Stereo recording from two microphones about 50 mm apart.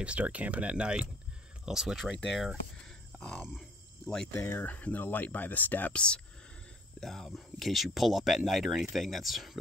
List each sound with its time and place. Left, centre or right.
0.0 s speech: right
1.7 s speech: centre
3.2 s grunt: centre
4.0 s cricket: centre
4.3 s speech: left
4.6 s speech: left
5.9 s speech: left
7.0 s speech: centre